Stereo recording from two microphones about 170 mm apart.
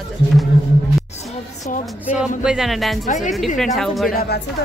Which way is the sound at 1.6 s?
45° left (ahead or behind).